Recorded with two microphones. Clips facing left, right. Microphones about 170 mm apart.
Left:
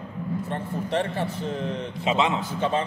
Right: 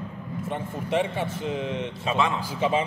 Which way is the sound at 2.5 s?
5° right (ahead or behind).